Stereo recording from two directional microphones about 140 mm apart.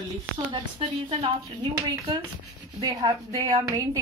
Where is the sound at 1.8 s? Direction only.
30° right (ahead or behind).